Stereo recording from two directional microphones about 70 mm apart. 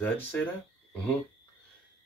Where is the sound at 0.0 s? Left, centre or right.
Left.